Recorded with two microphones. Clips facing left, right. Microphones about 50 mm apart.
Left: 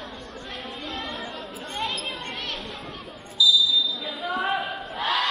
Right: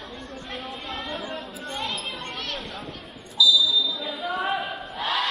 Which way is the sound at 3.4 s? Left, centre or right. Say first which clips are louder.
Right 1 dB; centre.